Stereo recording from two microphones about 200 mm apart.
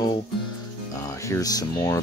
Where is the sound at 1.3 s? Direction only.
20° left (ahead or behind).